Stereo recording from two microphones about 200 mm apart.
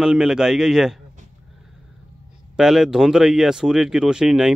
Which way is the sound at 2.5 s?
Centre (ahead or behind).